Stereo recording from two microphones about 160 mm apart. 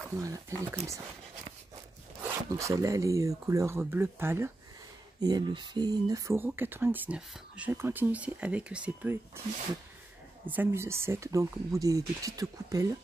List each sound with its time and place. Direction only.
0.1 s speech: 20° right (ahead or behind)
2.2 s speech: 20° right (ahead or behind)
5.2 s speech: 25° right (ahead or behind)
10.4 s speech: 10° right (ahead or behind)